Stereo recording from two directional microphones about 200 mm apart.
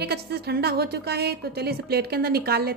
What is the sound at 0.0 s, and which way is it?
A woman's voice, 55° right (ahead or behind).